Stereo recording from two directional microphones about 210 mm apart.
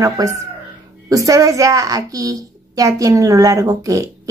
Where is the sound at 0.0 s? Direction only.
15° right (ahead or behind).